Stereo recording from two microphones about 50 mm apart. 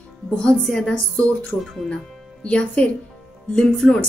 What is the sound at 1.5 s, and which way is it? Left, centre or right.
Speech, left.